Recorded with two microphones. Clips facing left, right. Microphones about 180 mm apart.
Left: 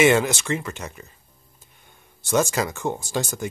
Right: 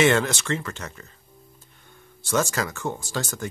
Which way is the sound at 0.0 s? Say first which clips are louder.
Left 2 dB; 10° left (ahead or behind).